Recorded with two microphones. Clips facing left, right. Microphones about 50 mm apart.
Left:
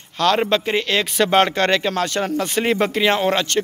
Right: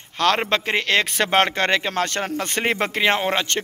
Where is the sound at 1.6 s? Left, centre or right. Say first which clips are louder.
Left 3 dB; right.